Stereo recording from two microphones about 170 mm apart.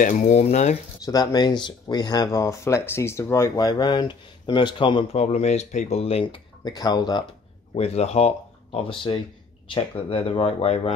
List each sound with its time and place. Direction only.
0.0 s speech: 45° left (ahead or behind)
1.0 s speech: 20° left (ahead or behind)
5.2 s speech: 40° left (ahead or behind)
6.6 s speech: 25° left (ahead or behind)
7.7 s speech: 35° left (ahead or behind)